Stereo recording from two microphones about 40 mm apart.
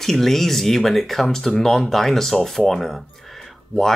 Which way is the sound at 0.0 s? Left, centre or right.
Centre.